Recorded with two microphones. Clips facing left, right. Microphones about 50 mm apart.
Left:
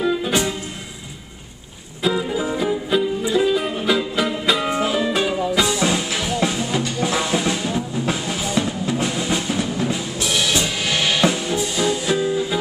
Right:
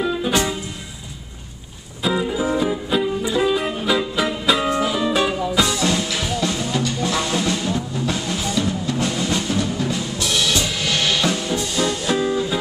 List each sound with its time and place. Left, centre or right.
0.0 s music: centre
2.0 s music: centre
4.6 s music: centre
5.8 s music: centre
8.1 s drum: centre
8.5 s music: centre